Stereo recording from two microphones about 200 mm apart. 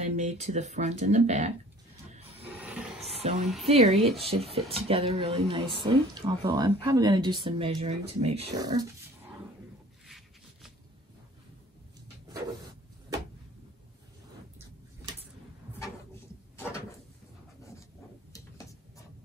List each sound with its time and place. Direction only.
0.0 s speech: 35° right (ahead or behind)
2.5 s a sound: 5° right (ahead or behind)
3.1 s music: 30° right (ahead or behind)
3.6 s speech: 30° right (ahead or behind)
8.5 s speech: 20° right (ahead or behind)
10.0 s a sound: centre (ahead or behind)